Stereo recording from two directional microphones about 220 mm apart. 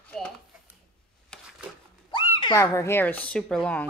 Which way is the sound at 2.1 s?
20° left (ahead or behind).